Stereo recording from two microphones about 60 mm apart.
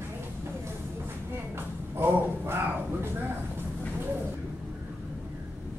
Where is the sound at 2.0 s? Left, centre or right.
Right.